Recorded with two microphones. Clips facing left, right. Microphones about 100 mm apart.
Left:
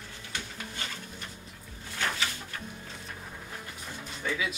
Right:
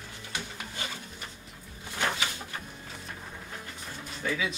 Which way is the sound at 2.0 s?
20° right (ahead or behind).